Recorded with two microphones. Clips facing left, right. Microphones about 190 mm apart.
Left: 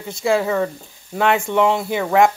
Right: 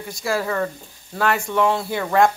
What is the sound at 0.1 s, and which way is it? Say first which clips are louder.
Speech: left 5 dB; 20° left (ahead or behind).